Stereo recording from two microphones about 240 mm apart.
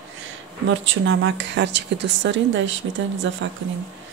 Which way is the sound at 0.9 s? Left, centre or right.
Right.